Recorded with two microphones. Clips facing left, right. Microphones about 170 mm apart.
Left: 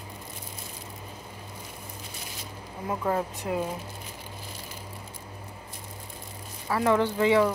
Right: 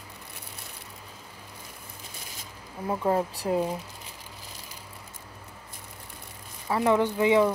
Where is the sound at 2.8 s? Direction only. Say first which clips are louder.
Right 2 dB; 25° right (ahead or behind).